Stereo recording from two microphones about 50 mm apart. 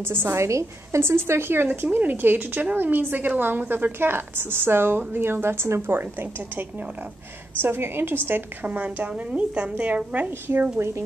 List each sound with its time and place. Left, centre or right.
0.0 s speech: right
0.4 s a woman's voice: right
1.0 s speech: right
7.6 s speech: right
8.6 s a woman's voice: right
9.1 s a woman's voice: right
10.8 s a woman's voice: right